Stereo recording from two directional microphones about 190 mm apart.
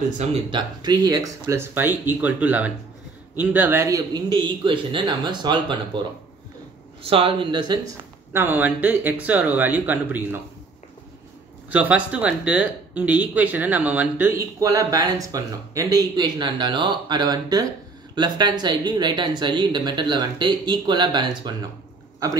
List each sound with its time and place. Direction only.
0.2 s speech: 35° right (ahead or behind)
1.0 s speech: 20° right (ahead or behind)
7.0 s speech: 30° right (ahead or behind)
8.3 s speech: 10° right (ahead or behind)
11.7 s speech: 5° right (ahead or behind); by 21.5 s 25° right (ahead or behind)